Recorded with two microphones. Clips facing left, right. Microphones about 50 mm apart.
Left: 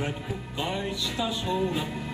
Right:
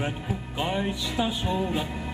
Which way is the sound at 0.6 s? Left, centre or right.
Right.